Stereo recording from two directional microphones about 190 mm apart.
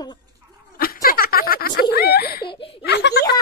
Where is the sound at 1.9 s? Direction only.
55° left (ahead or behind).